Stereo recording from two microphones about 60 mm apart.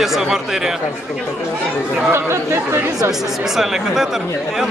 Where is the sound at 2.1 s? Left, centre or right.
Right.